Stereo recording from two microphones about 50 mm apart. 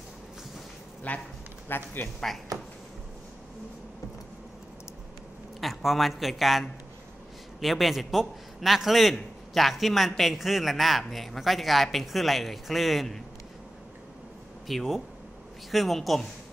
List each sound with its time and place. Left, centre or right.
1.1 s speech: left
1.7 s speech: left
5.6 s a man's voice: centre
7.6 s a man's voice: centre
14.7 s a man's voice: centre